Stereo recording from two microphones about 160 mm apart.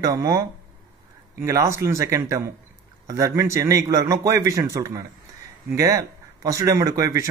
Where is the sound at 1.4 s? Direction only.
20° right (ahead or behind).